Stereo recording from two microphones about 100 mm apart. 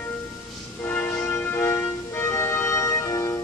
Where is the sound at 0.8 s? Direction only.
15° left (ahead or behind).